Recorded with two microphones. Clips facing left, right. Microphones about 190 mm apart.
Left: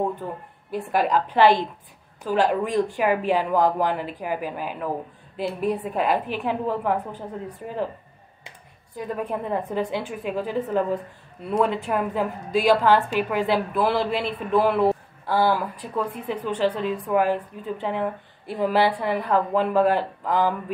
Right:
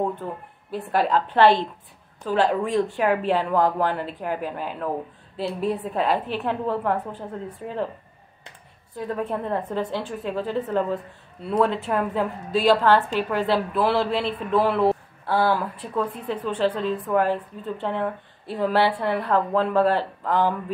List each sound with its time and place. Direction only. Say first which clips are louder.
0.9 s a woman's voice: even; 5° left (ahead or behind)
9.8 s a woman's voice: left 1 dB; 15° left (ahead or behind)